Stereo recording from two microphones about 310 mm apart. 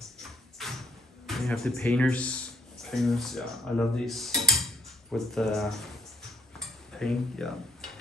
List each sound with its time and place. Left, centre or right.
0.6 s a sound: centre
1.2 s a man's voice: centre
6.6 s dishes: centre